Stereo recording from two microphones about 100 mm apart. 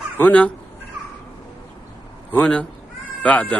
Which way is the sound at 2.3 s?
10° left (ahead or behind).